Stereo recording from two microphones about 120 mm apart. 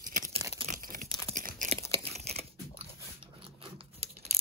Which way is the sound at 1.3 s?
90° right.